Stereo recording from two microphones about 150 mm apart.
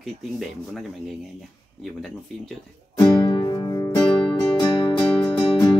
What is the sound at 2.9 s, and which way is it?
Music, 30° left (ahead or behind).